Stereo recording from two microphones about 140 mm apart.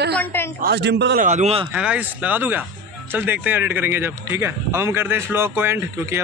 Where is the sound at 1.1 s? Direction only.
60° right (ahead or behind).